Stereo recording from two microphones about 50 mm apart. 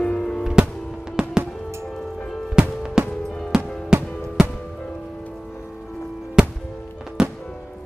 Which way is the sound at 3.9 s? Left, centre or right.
Centre.